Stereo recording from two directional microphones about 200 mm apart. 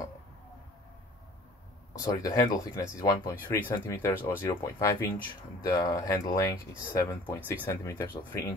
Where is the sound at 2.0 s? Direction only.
15° left (ahead or behind).